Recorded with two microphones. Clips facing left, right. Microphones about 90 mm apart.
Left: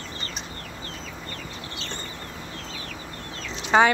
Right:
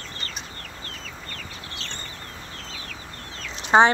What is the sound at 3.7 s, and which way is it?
Speech, 25° right (ahead or behind).